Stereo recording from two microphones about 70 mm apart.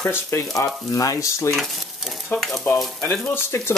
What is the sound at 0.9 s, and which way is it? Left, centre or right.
Speech, left.